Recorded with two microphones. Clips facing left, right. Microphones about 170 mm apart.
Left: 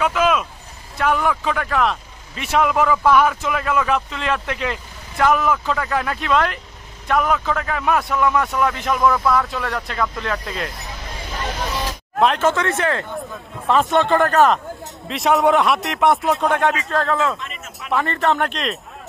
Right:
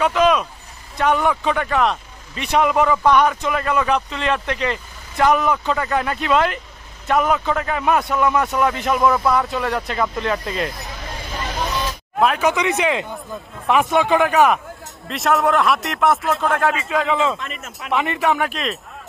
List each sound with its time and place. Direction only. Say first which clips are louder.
0.0 s speech: right 2 dB; centre (ahead or behind)
12.2 s speech: left 1 dB; 5° right (ahead or behind)
12.4 s speech: even; 15° right (ahead or behind)
13.8 s speech: even; 5° right (ahead or behind)
15.0 s speech: left 2 dB; centre (ahead or behind)
17.9 s speech: even; 15° right (ahead or behind)